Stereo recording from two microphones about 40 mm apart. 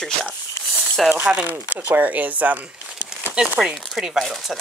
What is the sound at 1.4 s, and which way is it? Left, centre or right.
Speech, right.